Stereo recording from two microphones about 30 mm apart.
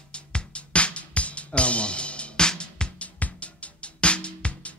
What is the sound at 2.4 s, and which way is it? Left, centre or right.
Music, left.